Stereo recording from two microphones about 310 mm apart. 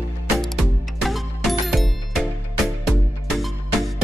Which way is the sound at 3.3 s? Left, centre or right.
Centre.